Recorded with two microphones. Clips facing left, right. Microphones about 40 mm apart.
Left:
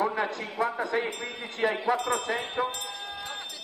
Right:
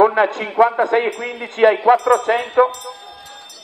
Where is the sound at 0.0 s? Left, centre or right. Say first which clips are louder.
Right 14 dB; right.